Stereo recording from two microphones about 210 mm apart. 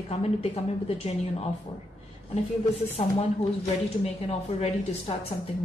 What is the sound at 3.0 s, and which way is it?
A woman's voice, 30° left (ahead or behind).